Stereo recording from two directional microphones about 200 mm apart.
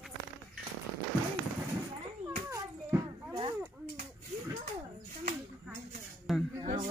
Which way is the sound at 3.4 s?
25° right (ahead or behind).